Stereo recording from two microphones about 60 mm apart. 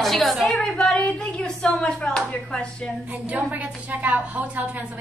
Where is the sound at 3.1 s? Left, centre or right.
Right.